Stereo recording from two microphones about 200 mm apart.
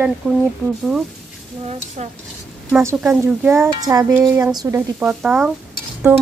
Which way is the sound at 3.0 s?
5° right (ahead or behind).